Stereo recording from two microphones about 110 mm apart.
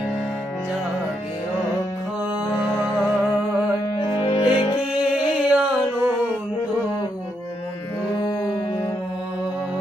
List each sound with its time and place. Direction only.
4.2 s music: 45° left (ahead or behind)
4.9 s music: 10° right (ahead or behind)